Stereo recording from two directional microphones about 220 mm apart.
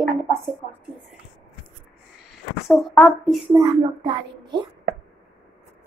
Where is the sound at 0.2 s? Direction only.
10° right (ahead or behind).